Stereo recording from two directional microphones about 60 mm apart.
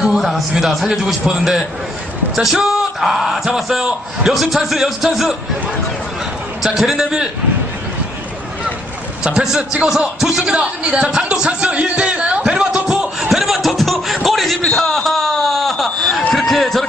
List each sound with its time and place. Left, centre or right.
0.0 s a man's voice: centre
6.6 s a man's voice: centre
9.2 s speech: centre
9.8 s speech: centre
10.5 s speech: centre
13.2 s a sound: centre